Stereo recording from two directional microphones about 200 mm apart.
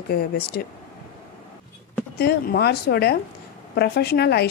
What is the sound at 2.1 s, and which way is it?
A woman's voice, 50° left (ahead or behind).